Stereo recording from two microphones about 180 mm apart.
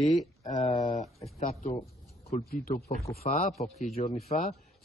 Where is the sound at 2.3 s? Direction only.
50° left (ahead or behind).